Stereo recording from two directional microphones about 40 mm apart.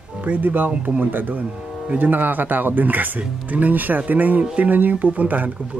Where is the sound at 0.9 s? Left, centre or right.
Right.